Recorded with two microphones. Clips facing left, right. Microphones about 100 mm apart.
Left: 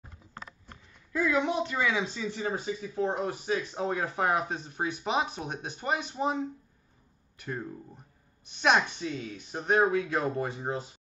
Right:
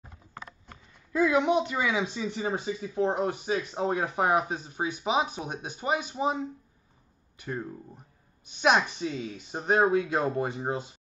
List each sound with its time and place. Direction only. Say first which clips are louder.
1.1 s a woman's voice: right 4 dB; 15° right (ahead or behind)
9.5 s speech: right 2 dB; 15° right (ahead or behind)